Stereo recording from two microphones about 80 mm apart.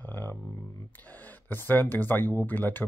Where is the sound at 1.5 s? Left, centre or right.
Left.